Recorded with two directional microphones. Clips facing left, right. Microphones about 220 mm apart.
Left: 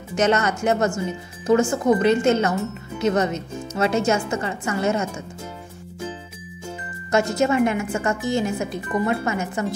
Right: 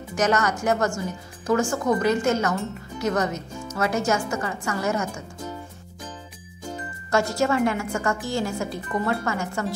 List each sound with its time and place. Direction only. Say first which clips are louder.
0.1 s a woman's voice: left 3 dB; 25° left (ahead or behind)
7.1 s a woman's voice: left 2 dB; 20° left (ahead or behind)